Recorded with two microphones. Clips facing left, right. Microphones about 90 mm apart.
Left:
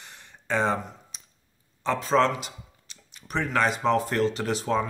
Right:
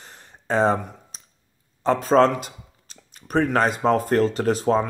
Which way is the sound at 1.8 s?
40° right (ahead or behind).